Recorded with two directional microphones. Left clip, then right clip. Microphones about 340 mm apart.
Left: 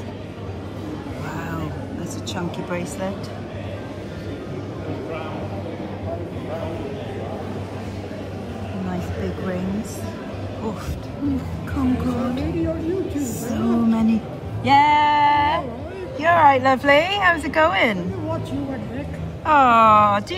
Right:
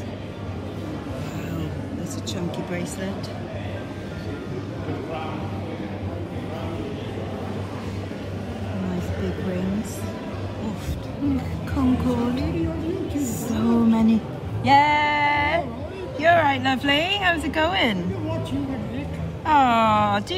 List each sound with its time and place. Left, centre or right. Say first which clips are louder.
11.7 s a sound: even; centre
13.1 s music: left 1 dB; centre
14.7 s female singing: left 2 dB; centre
16.2 s speech: left 4 dB; centre
19.4 s speech: left 4 dB; centre